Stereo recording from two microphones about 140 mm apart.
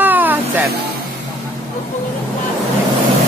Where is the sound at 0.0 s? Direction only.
10° right (ahead or behind).